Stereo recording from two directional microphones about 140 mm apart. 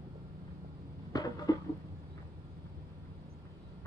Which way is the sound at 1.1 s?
25° left (ahead or behind).